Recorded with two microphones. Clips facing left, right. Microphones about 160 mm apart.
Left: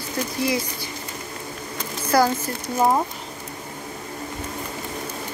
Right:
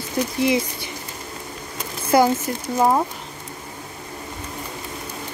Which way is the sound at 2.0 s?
20° right (ahead or behind).